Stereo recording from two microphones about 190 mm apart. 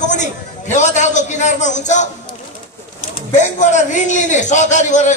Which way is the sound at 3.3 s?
40° left (ahead or behind).